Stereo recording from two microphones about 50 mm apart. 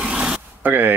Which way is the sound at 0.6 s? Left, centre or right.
Right.